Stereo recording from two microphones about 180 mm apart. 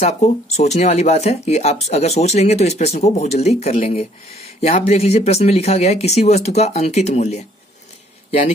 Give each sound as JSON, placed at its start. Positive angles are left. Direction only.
{"t": 0.0, "sound": "speech", "side_deg": 40}